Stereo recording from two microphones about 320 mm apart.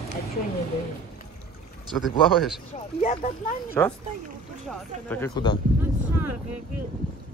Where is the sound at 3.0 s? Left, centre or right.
Centre.